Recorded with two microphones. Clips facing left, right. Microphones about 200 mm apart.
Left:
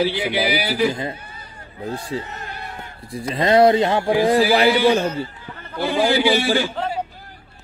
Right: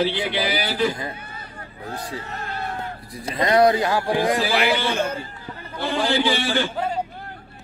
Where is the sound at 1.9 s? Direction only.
25° left (ahead or behind).